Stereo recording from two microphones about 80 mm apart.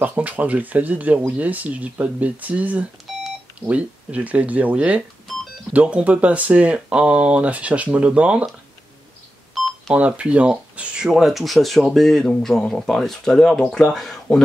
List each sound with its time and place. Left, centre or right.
0.0 s speech: centre
9.5 s telephone dialing: centre
9.9 s speech: centre